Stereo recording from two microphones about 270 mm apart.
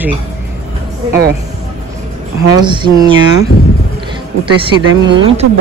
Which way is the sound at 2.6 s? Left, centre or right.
Centre.